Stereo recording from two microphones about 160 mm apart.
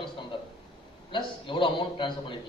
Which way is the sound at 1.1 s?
30° left (ahead or behind).